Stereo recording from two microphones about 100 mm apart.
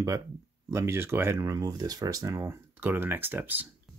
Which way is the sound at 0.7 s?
25° right (ahead or behind).